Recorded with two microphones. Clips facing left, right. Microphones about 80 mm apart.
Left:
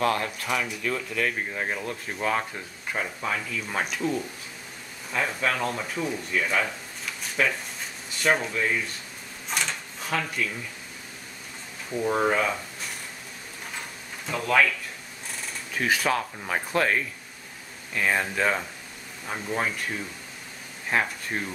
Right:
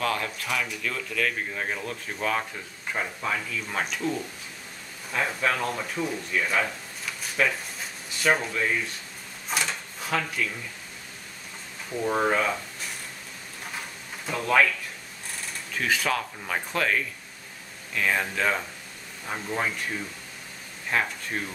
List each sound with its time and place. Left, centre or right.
0.0 s speech: centre
9.5 s drawer open or close: centre
12.0 s speech: centre
14.2 s speech: centre
15.7 s speech: centre
20.9 s speech: centre